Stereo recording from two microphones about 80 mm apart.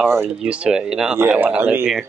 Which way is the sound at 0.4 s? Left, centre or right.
Centre.